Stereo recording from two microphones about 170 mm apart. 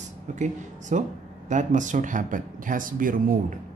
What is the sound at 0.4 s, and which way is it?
Speech, 45° right (ahead or behind).